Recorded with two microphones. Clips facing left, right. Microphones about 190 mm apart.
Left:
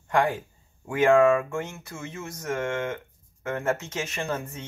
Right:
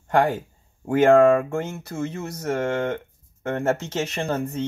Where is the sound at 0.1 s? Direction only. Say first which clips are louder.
Right 4 dB; 40° right (ahead or behind).